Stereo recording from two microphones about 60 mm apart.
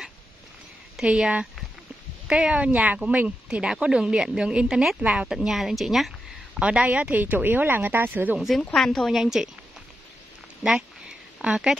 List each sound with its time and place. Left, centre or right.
1.0 s speech: centre
5.3 s speech: centre
6.6 s speech: centre
8.7 s speech: centre
11.4 s speech: centre